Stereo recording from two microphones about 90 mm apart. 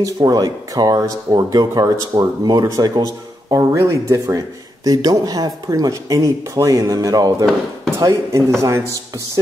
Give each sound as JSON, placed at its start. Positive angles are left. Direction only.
{"t": 0.0, "sound": "speech", "side_deg": -45}
{"t": 3.7, "sound": "speech", "side_deg": -35}